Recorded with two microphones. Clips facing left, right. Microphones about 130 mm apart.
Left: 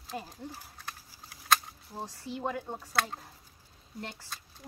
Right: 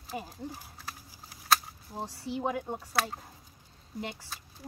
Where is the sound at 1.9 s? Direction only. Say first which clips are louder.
Right 3 dB; 15° right (ahead or behind).